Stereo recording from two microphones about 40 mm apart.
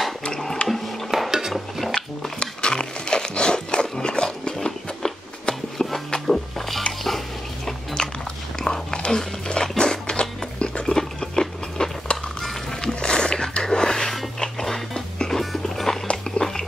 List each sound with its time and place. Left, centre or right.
0.6 s music: left
1.1 s dishes: centre
1.5 s stir: centre
2.4 s a sound: left
6.2 s music: centre
8.0 s biting: left
10.9 s a sound: centre
12.1 s music: left
12.8 s a sound: centre